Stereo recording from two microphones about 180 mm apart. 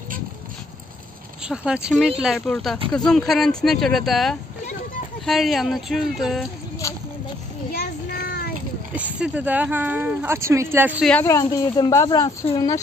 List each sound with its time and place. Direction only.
1.5 s speech: 5° right (ahead or behind)
6.8 s a sound: 15° left (ahead or behind)
7.7 s child singing: 60° left (ahead or behind)
8.9 s speech: 10° right (ahead or behind)
11.1 s speech: 10° left (ahead or behind)